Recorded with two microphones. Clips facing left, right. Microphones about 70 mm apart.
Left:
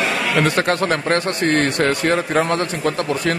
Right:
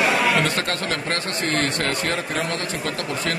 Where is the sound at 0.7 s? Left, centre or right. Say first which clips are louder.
Left 7 dB; left.